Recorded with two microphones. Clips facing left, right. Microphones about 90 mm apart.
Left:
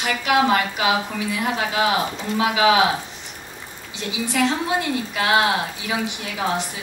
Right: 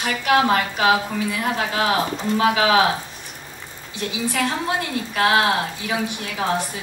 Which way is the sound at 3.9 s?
20° left (ahead or behind).